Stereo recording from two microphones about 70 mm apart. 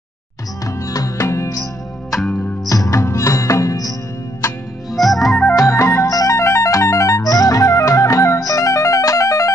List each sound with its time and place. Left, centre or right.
0.7 s music: left
2.7 s music: left
4.9 s music: centre
5.5 s music: left